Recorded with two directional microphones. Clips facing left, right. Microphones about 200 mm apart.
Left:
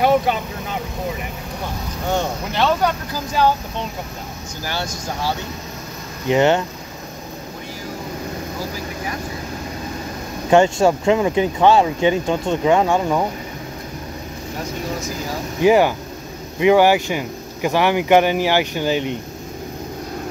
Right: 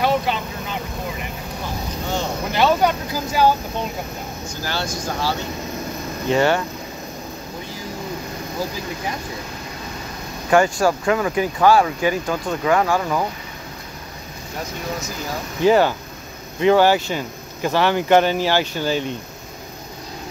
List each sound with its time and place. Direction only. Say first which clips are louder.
2.5 s speech: right 2 dB; 10° right (ahead or behind)
4.6 s speech: right 1 dB; 15° left (ahead or behind)
10.5 s speech: left 3 dB; 25° left (ahead or behind)
15.6 s speech: left 1 dB; 15° left (ahead or behind)